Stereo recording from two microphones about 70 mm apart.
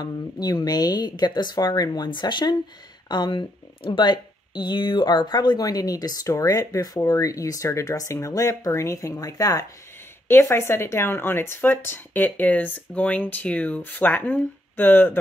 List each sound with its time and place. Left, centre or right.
0.0 s speech: left
6.2 s speech: left
7.0 s speech: left
9.2 s speech: left
10.2 s speech: left